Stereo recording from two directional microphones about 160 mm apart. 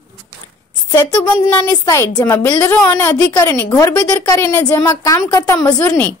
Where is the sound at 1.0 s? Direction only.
15° left (ahead or behind).